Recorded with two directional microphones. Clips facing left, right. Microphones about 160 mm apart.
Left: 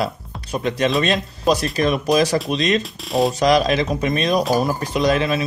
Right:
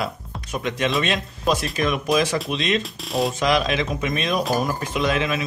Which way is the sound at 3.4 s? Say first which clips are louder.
Left 5 dB; 40° left (ahead or behind).